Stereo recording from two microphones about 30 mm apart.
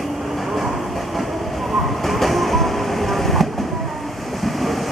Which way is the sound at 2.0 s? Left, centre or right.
Centre.